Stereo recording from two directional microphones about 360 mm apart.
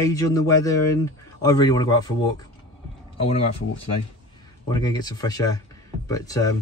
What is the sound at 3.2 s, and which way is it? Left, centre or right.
Speech, centre.